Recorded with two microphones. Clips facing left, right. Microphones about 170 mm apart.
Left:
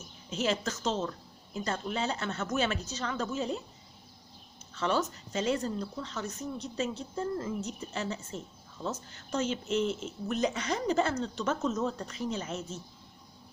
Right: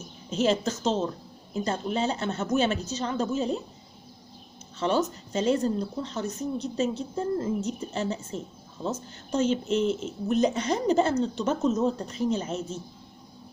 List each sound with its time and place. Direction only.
0.4 s speech: 25° right (ahead or behind)
4.7 s speech: 25° right (ahead or behind)